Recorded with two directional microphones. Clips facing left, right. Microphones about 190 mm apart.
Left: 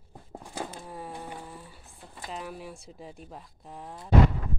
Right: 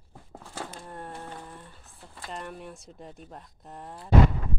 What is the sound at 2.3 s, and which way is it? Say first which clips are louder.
Speech: even; 5° left (ahead or behind).